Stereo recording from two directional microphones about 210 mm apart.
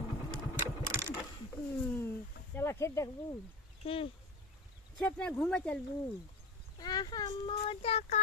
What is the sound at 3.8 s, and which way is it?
Speech, 25° left (ahead or behind).